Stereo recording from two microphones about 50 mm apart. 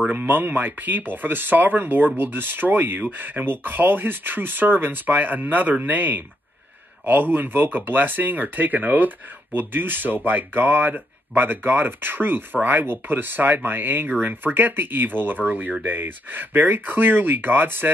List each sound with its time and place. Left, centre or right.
0.1 s speech: right